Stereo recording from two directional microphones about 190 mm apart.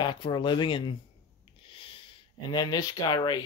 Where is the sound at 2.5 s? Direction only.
20° left (ahead or behind).